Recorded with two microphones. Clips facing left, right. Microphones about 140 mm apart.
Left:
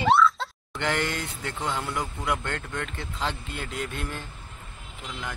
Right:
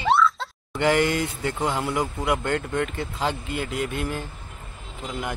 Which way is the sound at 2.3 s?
10° right (ahead or behind).